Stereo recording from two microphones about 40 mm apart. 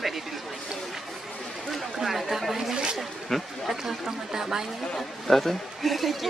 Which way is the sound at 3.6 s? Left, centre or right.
Centre.